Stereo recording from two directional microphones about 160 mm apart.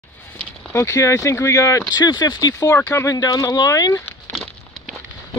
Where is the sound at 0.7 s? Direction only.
20° left (ahead or behind).